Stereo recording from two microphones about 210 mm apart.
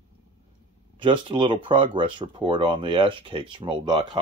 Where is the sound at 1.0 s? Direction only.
25° right (ahead or behind).